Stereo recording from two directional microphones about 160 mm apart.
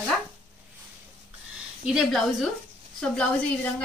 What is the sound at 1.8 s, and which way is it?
A woman's voice, centre (ahead or behind).